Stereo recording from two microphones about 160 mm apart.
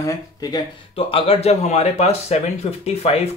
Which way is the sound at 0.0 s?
20° left (ahead or behind).